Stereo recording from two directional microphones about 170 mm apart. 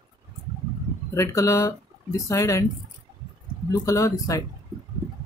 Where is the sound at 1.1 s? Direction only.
20° left (ahead or behind).